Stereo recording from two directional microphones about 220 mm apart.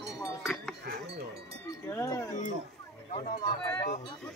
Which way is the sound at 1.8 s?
10° left (ahead or behind).